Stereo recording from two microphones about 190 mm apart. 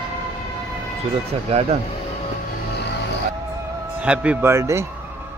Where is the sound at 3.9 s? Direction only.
5° right (ahead or behind).